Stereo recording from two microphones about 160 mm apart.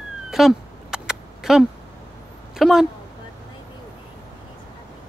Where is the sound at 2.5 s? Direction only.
Centre (ahead or behind).